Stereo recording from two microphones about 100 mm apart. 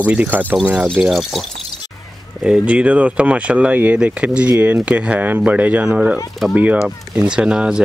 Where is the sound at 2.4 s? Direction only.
10° right (ahead or behind).